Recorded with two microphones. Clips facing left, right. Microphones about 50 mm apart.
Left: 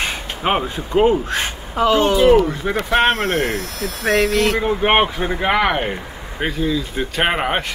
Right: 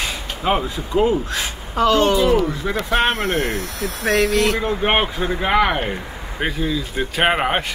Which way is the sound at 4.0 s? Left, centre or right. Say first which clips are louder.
Left 1 dB; left.